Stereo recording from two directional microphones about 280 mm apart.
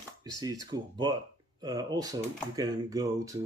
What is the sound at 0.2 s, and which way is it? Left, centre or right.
Speech, centre.